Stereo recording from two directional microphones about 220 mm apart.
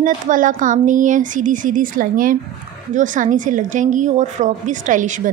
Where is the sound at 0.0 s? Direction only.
35° right (ahead or behind).